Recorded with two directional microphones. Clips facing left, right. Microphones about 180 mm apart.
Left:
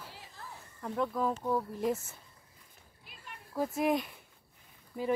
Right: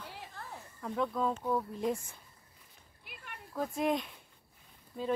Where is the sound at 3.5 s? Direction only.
5° left (ahead or behind).